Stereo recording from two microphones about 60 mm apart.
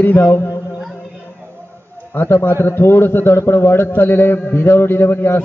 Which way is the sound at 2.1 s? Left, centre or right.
Left.